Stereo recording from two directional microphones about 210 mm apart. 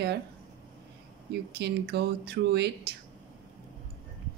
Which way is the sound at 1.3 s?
50° right (ahead or behind).